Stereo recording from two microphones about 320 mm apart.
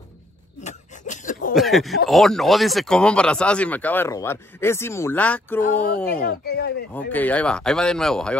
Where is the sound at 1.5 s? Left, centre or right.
Centre.